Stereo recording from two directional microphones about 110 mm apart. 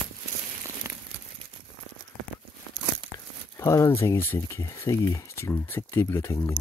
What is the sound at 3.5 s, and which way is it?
Speech, 30° left (ahead or behind).